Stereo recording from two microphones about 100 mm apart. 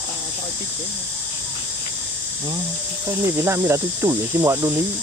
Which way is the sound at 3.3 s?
25° right (ahead or behind).